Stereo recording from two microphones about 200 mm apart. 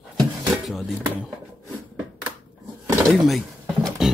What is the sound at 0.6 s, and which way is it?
Speech, centre (ahead or behind).